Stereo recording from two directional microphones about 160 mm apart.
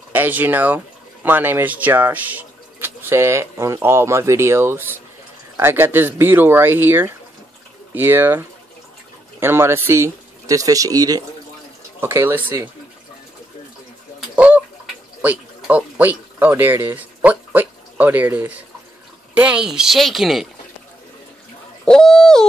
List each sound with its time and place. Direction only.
0.1 s speech: 10° right (ahead or behind)
14.3 s chicken: 10° right (ahead or behind)
15.2 s speech: 10° right (ahead or behind)
21.8 s owl: 5° left (ahead or behind)